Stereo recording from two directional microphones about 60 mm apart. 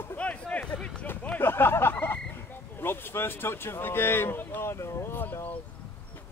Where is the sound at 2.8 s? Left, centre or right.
Left.